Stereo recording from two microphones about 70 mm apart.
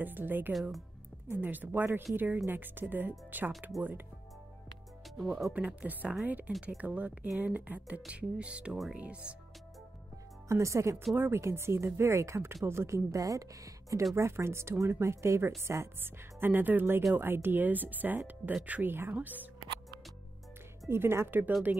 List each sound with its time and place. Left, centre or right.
0.0 s speech: right
0.5 s speech: centre
1.4 s speech: right
5.1 s speech: centre
5.5 s speech: right
10.5 s speech: right
14.1 s speech: right
20.9 s speech: right